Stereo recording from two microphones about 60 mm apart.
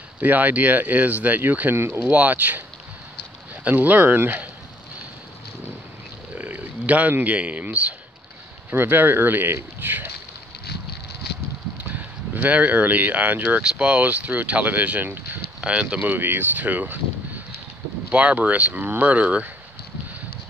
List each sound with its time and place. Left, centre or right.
0.2 s speech: right
3.6 s speech: right
6.3 s speech: right
11.8 s speech: right
13.6 s speech: centre
18.1 s speech: right